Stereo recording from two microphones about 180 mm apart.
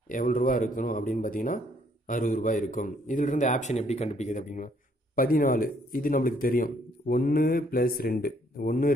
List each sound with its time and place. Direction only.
0.1 s speech: 50° left (ahead or behind)